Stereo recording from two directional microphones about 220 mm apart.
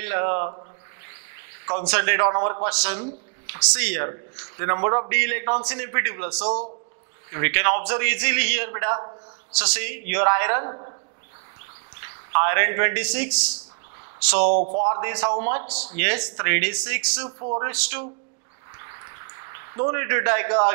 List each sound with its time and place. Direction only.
0.0 s speech: 15° right (ahead or behind)
1.7 s a man's voice: 15° right (ahead or behind)
2.7 s a man's voice: 10° right (ahead or behind); by 11.0 s 25° right (ahead or behind)
12.0 s a man's voice: 15° right (ahead or behind)
14.5 s speech: 40° right (ahead or behind)
14.9 s a man's voice: 20° right (ahead or behind)
17.4 s a man's voice: 30° right (ahead or behind)
17.6 s a man's voice: 10° right (ahead or behind)
19.3 s a man's voice: 20° right (ahead or behind)